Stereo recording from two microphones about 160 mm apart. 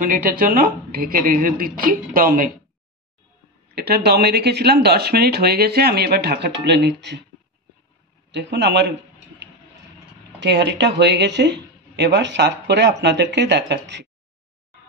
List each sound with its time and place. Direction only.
0.0 s a woman's voice: 60° right (ahead or behind)
3.7 s speech: 85° right
8.3 s speech: 90° right
10.4 s speech: 90° right